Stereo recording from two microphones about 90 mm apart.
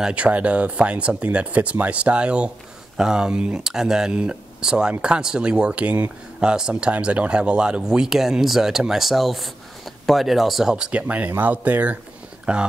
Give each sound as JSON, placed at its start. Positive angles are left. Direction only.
{"t": 0.0, "sound": "speech", "side_deg": -15}